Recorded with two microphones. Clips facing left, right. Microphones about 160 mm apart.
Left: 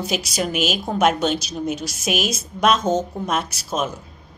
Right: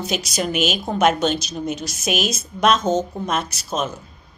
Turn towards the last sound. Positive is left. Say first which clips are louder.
# even
turn(degrees=5)  # may be behind; listen again after turning